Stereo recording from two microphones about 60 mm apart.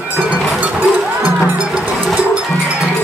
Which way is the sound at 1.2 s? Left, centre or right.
Centre.